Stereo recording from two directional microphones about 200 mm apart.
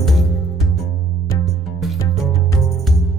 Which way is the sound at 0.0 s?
Centre (ahead or behind).